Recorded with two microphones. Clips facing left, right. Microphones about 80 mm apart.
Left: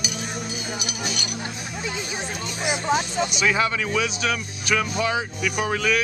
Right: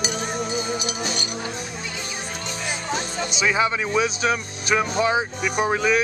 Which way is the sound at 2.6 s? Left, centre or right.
Centre.